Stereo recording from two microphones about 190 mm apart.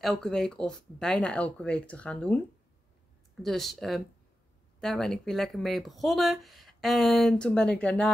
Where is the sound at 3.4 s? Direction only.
Centre (ahead or behind).